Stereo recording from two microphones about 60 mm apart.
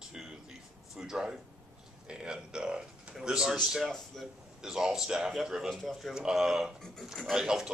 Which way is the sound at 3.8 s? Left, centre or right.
Centre.